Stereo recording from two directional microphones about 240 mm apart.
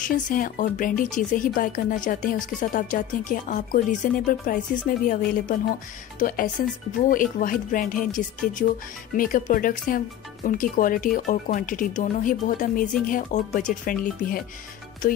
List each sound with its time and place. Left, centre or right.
0.0 s speech: left